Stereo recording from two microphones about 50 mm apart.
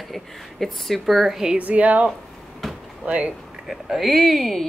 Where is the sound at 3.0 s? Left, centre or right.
Right.